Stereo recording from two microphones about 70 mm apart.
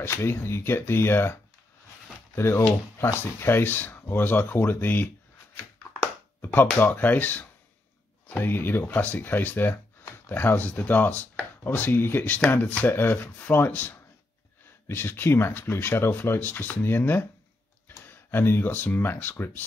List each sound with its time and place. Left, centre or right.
0.0 s speech: left
6.4 s speech: left